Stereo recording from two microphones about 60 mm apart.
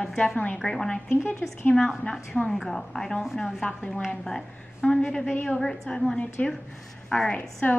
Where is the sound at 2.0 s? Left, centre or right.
Centre.